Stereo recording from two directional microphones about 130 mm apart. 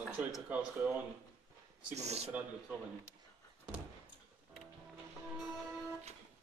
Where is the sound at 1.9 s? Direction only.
55° right (ahead or behind).